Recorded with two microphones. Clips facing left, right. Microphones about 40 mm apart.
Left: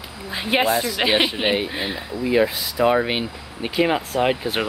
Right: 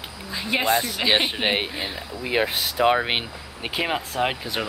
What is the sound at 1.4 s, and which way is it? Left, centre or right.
Speech, right.